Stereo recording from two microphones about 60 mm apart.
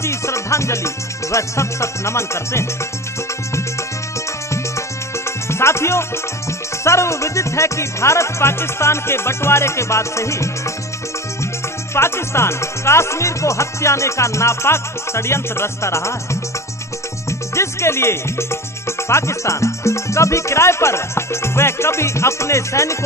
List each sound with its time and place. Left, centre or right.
0.0 s music: left
5.5 s music: left
11.9 s music: left
17.3 s music: left